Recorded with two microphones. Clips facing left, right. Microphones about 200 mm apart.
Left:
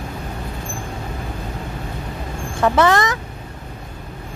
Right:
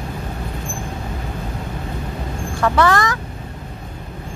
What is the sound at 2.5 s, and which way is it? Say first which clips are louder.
Speech: left 1 dB; 20° left (ahead or behind).